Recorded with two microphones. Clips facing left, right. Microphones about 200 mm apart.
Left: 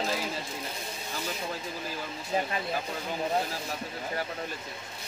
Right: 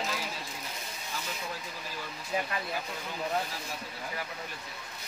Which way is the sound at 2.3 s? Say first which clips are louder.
Left 3 dB; 35° left (ahead or behind).